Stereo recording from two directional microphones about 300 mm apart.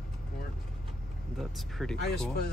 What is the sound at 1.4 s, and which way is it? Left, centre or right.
Speech, centre.